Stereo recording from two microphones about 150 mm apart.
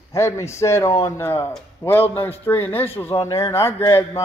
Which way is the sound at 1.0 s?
20° left (ahead or behind).